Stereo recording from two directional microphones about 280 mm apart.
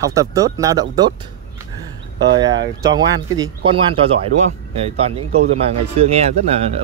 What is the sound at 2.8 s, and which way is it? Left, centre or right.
Speech, centre.